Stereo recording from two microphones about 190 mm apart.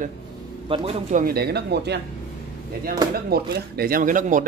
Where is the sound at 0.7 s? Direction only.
30° right (ahead or behind).